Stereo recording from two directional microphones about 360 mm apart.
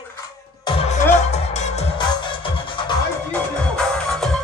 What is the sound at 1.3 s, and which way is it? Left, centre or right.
Music, centre.